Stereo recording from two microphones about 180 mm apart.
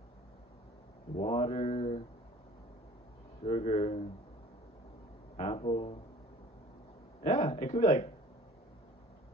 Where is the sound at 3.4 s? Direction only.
35° left (ahead or behind).